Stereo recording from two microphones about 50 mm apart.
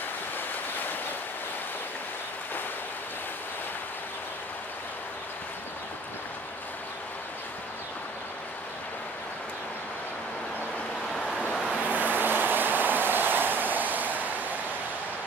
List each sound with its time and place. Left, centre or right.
11.1 s vehicle: centre
11.8 s vehicle: right